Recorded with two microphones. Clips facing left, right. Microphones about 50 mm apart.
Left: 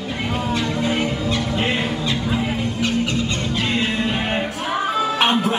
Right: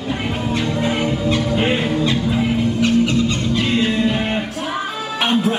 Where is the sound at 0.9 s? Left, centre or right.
Centre.